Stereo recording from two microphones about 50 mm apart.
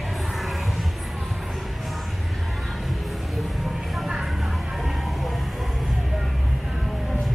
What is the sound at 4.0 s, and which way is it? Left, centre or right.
Music, centre.